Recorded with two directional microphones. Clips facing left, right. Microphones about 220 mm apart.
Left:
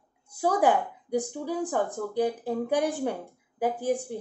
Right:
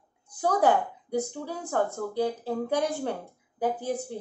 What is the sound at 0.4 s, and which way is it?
A woman's voice, 10° left (ahead or behind).